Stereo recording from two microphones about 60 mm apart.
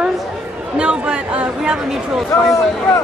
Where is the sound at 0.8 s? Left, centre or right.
Centre.